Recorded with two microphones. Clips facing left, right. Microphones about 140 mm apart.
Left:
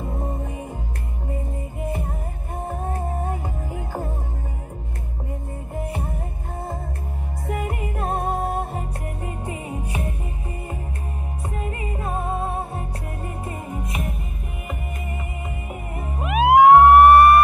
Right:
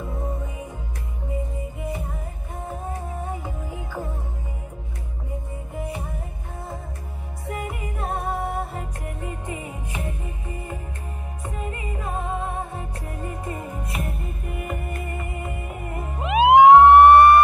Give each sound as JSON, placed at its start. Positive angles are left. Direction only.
{"t": 0.0, "sound": "music", "side_deg": 25}
{"t": 2.6, "sound": "music", "side_deg": 50}
{"t": 7.5, "sound": "music", "side_deg": 55}
{"t": 8.2, "sound": "music", "side_deg": 45}
{"t": 11.4, "sound": "music", "side_deg": 35}
{"t": 14.6, "sound": "music", "side_deg": 10}
{"t": 16.2, "sound": "music", "side_deg": -25}